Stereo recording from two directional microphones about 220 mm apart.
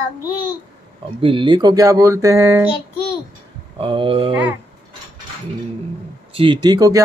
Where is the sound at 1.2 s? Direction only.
20° right (ahead or behind).